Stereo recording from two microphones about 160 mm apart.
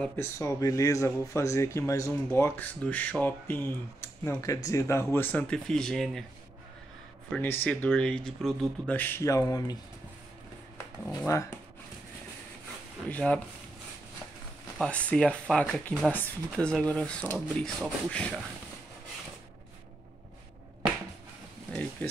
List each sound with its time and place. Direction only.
0.0 s speech: 15° left (ahead or behind)
7.4 s speech: 10° left (ahead or behind)
8.9 s speech: 10° left (ahead or behind)
11.1 s speech: 20° left (ahead or behind)
13.1 s speech: 10° left (ahead or behind)
14.8 s speech: 10° left (ahead or behind)
22.0 s speech: 10° left (ahead or behind)